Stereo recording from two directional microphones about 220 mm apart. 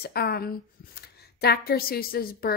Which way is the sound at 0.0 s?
45° left (ahead or behind).